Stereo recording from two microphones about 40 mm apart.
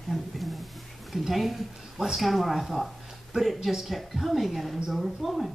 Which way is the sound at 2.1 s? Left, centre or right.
Centre.